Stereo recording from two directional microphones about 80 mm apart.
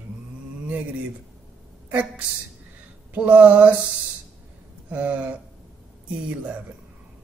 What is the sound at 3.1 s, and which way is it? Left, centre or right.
Speech, centre.